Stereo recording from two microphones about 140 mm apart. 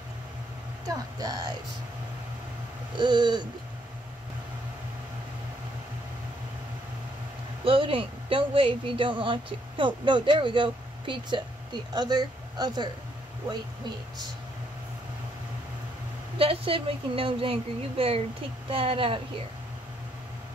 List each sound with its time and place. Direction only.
0.8 s speech: 25° right (ahead or behind)
3.0 s a woman's voice: 30° right (ahead or behind)
7.6 s a woman's voice: 40° right (ahead or behind)
16.3 s a woman's voice: 40° right (ahead or behind)